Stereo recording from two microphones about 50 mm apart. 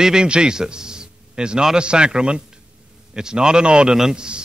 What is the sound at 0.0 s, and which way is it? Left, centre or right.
A man's voice, centre.